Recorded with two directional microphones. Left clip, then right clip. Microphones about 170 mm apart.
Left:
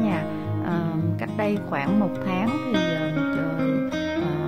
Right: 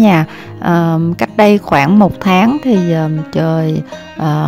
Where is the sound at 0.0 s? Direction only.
60° right (ahead or behind).